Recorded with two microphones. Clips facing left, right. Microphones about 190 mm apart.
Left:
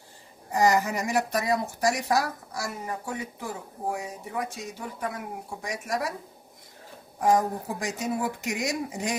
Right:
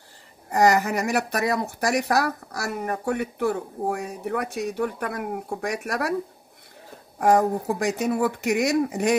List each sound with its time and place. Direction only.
0.5 s speech: 65° right (ahead or behind)
7.2 s speech: 60° right (ahead or behind)